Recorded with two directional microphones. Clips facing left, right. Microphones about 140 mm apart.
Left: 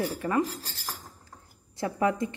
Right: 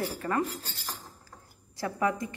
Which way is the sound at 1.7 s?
25° left (ahead or behind).